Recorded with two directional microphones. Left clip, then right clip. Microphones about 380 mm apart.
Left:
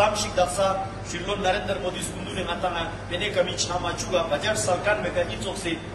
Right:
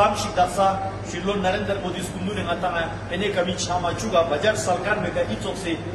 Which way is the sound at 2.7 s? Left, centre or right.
Centre.